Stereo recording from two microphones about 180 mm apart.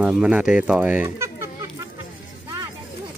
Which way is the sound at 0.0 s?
5° right (ahead or behind).